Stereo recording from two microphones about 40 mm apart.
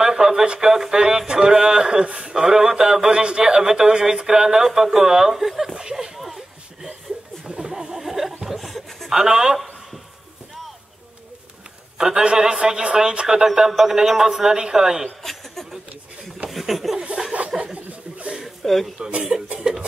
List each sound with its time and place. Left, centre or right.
0.0 s a man's voice: centre
5.8 s a sound: centre
6.1 s a sound: centre
7.4 s chuckle: centre
9.1 s a man's voice: centre
12.0 s a man's voice: centre
13.5 s a man's voice: centre
16.4 s chuckle: centre
17.2 s a sound: centre
18.6 s a man's voice: centre
18.9 s a man's voice: right